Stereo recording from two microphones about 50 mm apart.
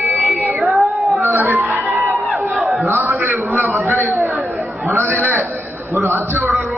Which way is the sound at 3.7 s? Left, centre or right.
Right.